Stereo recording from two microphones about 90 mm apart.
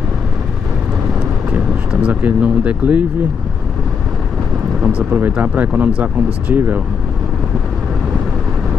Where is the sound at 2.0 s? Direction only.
15° right (ahead or behind).